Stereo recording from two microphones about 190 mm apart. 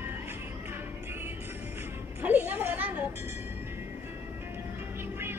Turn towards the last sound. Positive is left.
turn(degrees=-10)  # may be behind; listen again after turning